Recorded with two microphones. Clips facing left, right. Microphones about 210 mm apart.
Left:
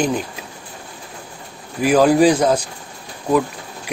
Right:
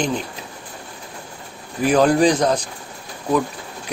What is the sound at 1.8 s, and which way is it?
Speech, 5° left (ahead or behind).